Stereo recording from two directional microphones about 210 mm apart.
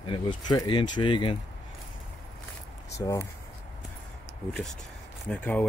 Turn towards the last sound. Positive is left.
turn(degrees=5)  # may be behind; listen again after turning